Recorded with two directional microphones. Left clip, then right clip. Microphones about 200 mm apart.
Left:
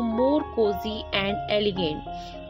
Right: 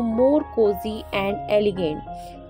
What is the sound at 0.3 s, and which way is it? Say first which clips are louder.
Music: right 4 dB; 20° left (ahead or behind).